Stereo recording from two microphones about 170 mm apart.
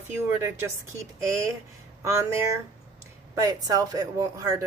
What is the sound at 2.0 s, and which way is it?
A woman's voice, 15° right (ahead or behind).